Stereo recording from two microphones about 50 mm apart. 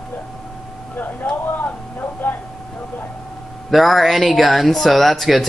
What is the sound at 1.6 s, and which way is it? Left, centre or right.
Speech, left.